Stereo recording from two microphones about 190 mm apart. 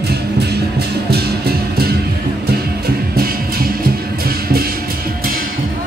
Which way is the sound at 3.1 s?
50° right (ahead or behind).